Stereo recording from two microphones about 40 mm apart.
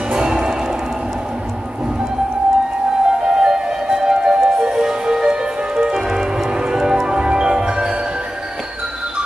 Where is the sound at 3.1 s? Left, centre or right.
Centre.